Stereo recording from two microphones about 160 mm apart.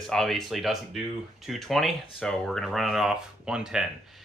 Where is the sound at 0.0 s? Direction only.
5° left (ahead or behind).